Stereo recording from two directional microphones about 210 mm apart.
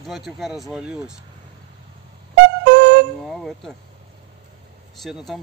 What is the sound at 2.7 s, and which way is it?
Music, 55° right (ahead or behind).